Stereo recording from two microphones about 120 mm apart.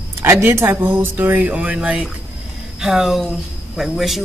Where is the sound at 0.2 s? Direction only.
20° right (ahead or behind).